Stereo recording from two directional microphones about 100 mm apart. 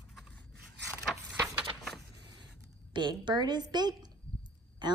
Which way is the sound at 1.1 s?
10° left (ahead or behind).